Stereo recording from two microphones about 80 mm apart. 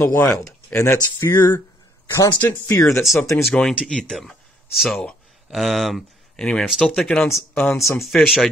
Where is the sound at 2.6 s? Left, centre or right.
Left.